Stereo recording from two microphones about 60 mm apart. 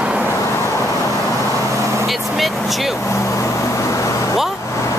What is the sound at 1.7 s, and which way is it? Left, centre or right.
Vehicle, right.